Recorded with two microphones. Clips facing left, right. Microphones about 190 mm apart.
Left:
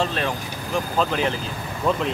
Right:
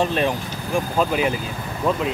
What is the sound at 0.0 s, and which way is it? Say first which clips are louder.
Speech: right 4 dB; 15° right (ahead or behind).